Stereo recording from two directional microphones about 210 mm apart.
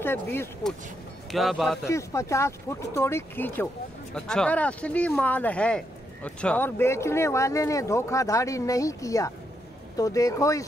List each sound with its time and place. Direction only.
0.0 s speech: 10° left (ahead or behind)
1.3 s a man's voice: centre (ahead or behind)
1.9 s speech: 15° left (ahead or behind)